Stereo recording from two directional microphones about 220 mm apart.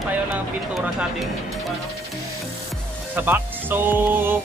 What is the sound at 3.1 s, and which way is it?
Speech, 10° right (ahead or behind).